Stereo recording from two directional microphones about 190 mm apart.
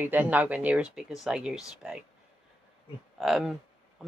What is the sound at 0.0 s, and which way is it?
Speech, 10° right (ahead or behind).